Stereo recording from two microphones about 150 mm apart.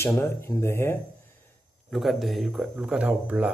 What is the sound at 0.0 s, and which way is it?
Speech, 15° left (ahead or behind).